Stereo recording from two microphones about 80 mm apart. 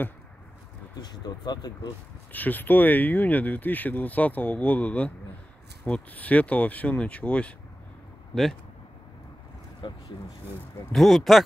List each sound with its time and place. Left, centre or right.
1.0 s speech: left
2.3 s speech: left
9.8 s speech: left
10.9 s speech: centre